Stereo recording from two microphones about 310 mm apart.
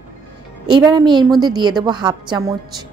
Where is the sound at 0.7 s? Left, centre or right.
Centre.